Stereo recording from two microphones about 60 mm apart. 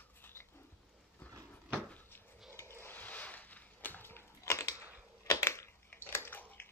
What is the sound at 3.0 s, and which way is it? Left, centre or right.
Crushing, left.